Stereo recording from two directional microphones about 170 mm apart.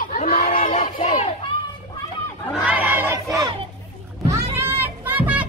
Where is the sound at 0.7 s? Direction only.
35° left (ahead or behind).